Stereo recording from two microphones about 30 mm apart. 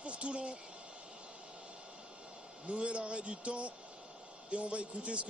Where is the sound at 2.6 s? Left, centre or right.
Right.